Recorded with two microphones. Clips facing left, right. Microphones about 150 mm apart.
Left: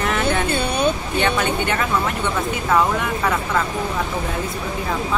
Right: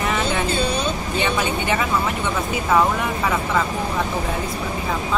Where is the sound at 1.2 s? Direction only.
5° right (ahead or behind).